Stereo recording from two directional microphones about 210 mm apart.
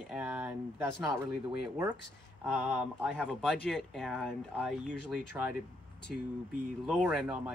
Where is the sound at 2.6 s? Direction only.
5° right (ahead or behind).